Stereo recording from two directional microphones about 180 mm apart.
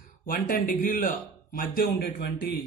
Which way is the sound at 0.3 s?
50° left (ahead or behind).